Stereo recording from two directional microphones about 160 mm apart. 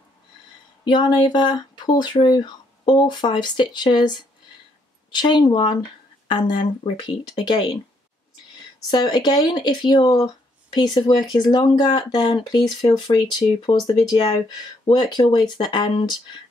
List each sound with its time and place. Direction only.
0.8 s speech: 30° left (ahead or behind)
8.9 s speech: 25° left (ahead or behind)